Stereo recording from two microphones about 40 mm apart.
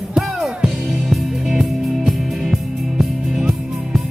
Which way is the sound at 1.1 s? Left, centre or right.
Centre.